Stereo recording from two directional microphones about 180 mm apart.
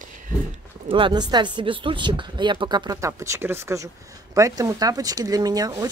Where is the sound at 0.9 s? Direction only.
30° right (ahead or behind).